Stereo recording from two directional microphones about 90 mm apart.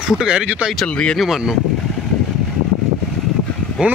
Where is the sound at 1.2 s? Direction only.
Centre (ahead or behind).